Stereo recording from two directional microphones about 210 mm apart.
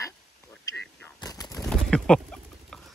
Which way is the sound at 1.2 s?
15° left (ahead or behind).